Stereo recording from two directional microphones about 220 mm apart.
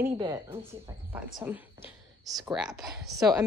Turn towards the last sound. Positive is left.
turn(degrees=0)  # may be behind; listen again after turning